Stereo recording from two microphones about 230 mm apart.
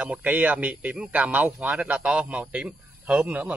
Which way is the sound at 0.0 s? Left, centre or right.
Centre.